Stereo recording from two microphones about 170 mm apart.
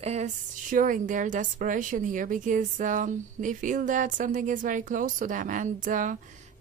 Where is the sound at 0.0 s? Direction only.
40° right (ahead or behind).